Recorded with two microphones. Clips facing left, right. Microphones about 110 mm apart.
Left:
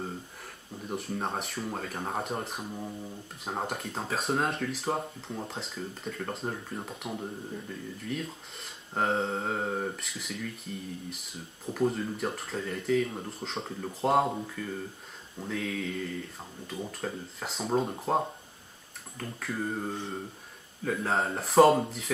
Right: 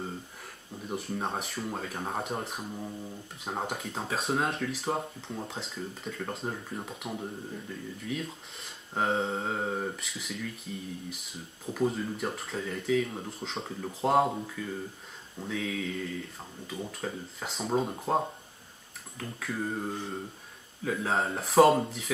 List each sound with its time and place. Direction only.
0.8 s speech: centre (ahead or behind)